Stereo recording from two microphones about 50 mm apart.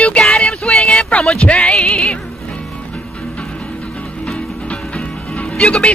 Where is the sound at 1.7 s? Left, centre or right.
Centre.